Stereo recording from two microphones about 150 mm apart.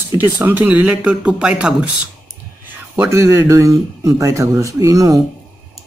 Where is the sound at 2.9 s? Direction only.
15° right (ahead or behind).